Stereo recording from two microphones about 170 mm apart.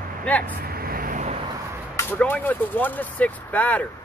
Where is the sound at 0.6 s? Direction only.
60° right (ahead or behind).